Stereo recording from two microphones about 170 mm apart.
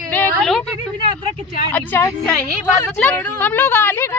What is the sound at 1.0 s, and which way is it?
Speech, 30° right (ahead or behind).